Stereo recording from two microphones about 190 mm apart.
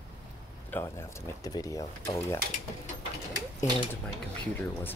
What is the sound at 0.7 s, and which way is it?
Speech, 10° left (ahead or behind).